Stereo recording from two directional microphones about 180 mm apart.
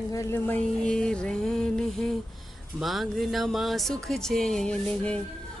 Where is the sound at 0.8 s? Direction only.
5° left (ahead or behind).